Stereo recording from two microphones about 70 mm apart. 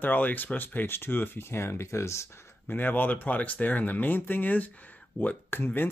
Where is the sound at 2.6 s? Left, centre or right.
Left.